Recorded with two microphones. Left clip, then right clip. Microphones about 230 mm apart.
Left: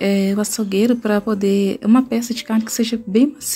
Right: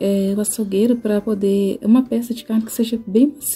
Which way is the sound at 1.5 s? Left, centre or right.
Left.